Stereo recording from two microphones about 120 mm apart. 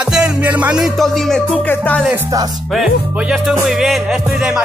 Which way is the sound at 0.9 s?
Centre (ahead or behind).